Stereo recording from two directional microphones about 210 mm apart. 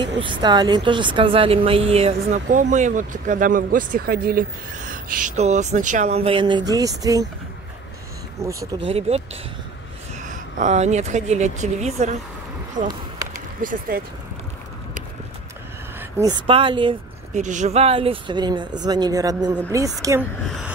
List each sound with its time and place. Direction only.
0.2 s a woman's voice: 20° right (ahead or behind)
8.4 s speech: 15° right (ahead or behind)
8.8 s speech: 30° right (ahead or behind)
12.8 s speech: 20° right (ahead or behind)
13.6 s a woman's voice: 40° right (ahead or behind)
16.0 s speech: 15° right (ahead or behind)
17.3 s speech: 35° right (ahead or behind); by 20.2 s 15° right (ahead or behind)
20.4 s a sound: centre (ahead or behind)